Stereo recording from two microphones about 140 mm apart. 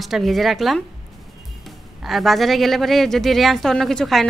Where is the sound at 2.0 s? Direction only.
Centre (ahead or behind).